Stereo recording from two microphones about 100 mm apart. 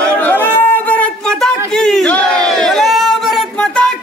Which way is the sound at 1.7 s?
5° left (ahead or behind).